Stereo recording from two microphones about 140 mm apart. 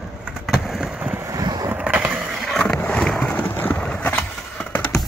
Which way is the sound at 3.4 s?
15° left (ahead or behind).